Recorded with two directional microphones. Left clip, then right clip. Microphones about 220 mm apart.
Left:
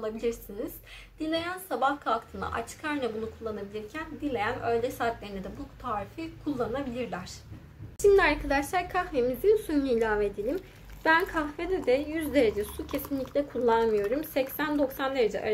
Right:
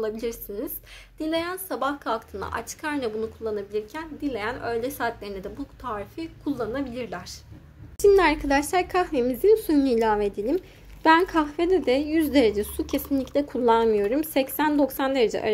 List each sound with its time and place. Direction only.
0.0 s a woman's voice: 50° right (ahead or behind)
8.0 s a woman's voice: 35° right (ahead or behind)